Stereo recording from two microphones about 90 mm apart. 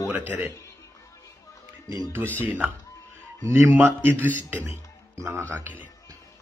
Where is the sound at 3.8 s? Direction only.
25° right (ahead or behind).